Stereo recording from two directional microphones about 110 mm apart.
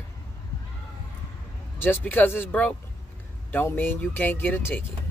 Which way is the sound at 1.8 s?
15° left (ahead or behind).